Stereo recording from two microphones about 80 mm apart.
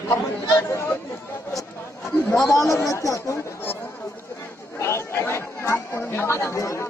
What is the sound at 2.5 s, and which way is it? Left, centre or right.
Speech, left.